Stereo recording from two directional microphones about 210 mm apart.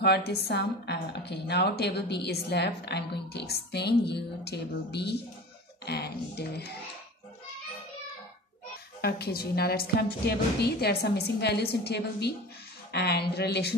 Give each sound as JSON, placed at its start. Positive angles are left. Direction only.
{"t": 0.0, "sound": "a woman's voice", "side_deg": 50}
{"t": 9.0, "sound": "a woman's voice", "side_deg": 50}